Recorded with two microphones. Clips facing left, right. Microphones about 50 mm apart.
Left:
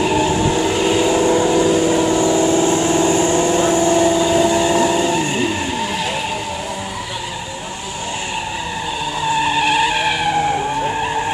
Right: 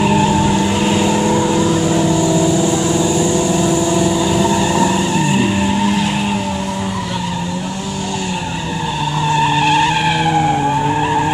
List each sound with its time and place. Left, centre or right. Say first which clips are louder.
0.0 s vehicle: right 2 dB; centre
2.0 s vehicle: right 1 dB; left
2.3 s vehicle: even; left
4.4 s vehicle: even; centre
9.3 s skidding: right 3 dB; centre